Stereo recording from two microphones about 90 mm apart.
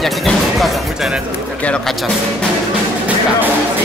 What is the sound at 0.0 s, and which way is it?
Speech, centre (ahead or behind).